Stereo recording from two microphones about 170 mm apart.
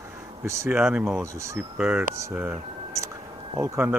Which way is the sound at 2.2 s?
10° right (ahead or behind).